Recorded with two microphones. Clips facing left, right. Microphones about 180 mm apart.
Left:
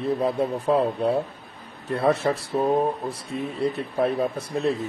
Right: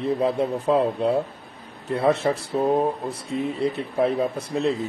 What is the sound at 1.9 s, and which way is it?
Speech, 25° right (ahead or behind).